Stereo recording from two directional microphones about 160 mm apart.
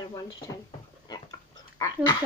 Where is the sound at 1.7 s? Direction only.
20° left (ahead or behind).